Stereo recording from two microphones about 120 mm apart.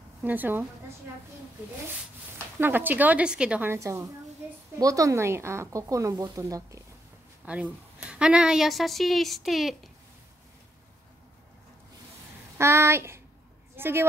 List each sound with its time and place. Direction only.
0.2 s a woman's voice: 15° right (ahead or behind)
2.3 s speech: 15° right (ahead or behind)
3.7 s speech: 25° right (ahead or behind)
7.4 s a woman's voice: 10° right (ahead or behind)
12.5 s a woman's voice: 20° right (ahead or behind)